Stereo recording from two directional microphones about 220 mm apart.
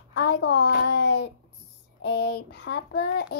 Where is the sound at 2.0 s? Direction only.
50° left (ahead or behind).